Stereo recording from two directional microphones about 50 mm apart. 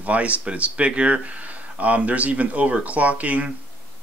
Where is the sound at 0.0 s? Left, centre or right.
Right.